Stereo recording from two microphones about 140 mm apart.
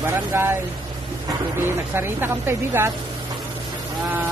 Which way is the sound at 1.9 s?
15° right (ahead or behind).